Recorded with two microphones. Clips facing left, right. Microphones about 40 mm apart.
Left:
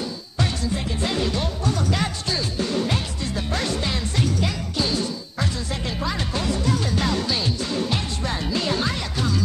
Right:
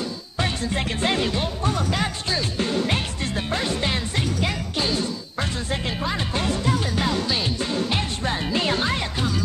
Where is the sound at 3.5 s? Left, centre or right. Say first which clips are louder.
Right 1 dB; right.